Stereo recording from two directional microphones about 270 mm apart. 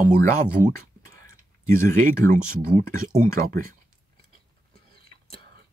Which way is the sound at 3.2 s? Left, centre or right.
Right.